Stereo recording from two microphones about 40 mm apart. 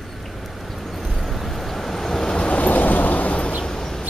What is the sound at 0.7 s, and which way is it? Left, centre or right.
Vehicle, centre.